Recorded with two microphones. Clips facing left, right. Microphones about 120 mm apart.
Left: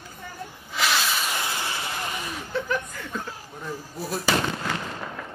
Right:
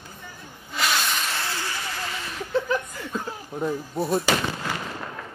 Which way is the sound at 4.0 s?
Centre (ahead or behind).